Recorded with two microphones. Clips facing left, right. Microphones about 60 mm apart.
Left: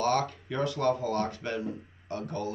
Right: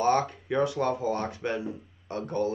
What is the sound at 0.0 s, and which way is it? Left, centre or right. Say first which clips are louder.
Speech: right 3 dB; centre.